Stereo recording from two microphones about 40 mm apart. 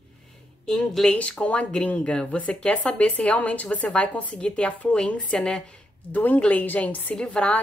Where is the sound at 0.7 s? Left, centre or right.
Centre.